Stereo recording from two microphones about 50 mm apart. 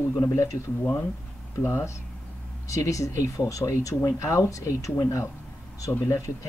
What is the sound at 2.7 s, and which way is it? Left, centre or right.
Speech, left.